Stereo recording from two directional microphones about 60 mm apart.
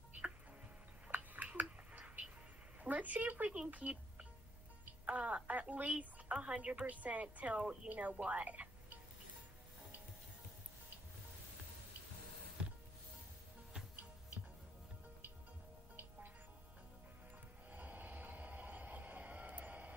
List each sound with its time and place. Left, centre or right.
1.1 s a sound: right
2.8 s a woman's voice: right
17.6 s vehicle: right